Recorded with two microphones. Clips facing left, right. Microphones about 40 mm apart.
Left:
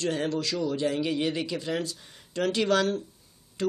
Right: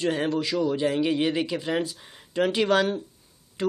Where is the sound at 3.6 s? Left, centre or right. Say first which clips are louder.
Right 2 dB; centre.